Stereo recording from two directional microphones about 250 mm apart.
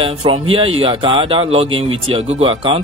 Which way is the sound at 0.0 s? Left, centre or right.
Right.